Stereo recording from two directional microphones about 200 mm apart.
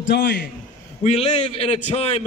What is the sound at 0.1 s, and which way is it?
Speech, 55° left (ahead or behind).